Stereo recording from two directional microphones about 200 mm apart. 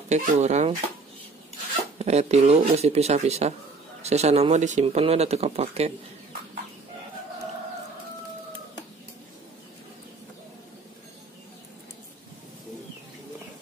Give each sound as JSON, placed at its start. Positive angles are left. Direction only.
{"t": 0.1, "sound": "speech", "side_deg": -35}
{"t": 2.0, "sound": "speech", "side_deg": -30}